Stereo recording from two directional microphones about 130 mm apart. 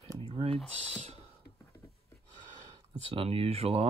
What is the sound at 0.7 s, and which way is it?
Speech, 55° right (ahead or behind).